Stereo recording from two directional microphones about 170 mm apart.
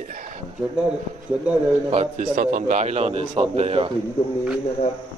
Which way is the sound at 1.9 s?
45° right (ahead or behind).